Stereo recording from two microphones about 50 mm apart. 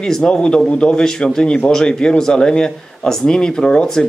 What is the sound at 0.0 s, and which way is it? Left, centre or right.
Speech, centre.